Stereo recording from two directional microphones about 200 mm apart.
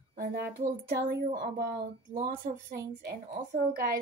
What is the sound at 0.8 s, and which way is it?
Speech, 50° right (ahead or behind).